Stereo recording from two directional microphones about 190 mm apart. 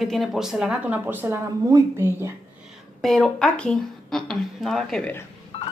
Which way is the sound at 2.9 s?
Centre (ahead or behind).